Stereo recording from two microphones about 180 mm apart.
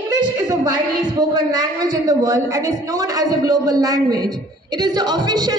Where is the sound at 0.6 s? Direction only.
20° right (ahead or behind).